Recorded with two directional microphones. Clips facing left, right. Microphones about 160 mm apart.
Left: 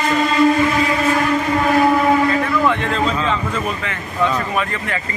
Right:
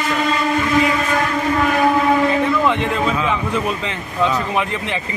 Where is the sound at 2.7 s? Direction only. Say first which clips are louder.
Even; 15° right (ahead or behind).